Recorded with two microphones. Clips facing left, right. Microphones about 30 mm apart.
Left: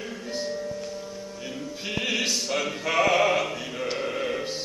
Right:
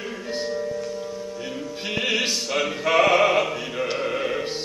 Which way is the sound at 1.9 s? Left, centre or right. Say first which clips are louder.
Right 3 dB; right.